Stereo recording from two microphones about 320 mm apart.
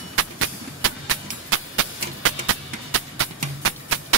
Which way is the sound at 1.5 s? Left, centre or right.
Right.